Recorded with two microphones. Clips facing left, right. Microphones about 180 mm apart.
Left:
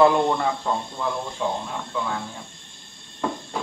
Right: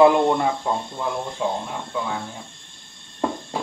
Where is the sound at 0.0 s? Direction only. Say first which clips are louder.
Right 3 dB; 15° right (ahead or behind).